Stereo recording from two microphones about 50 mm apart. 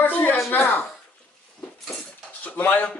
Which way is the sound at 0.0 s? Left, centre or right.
Left.